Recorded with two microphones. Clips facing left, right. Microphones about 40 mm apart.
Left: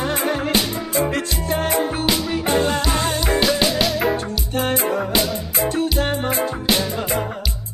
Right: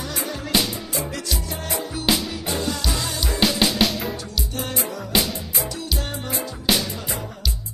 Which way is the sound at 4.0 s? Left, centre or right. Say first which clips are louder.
Left 8 dB; left.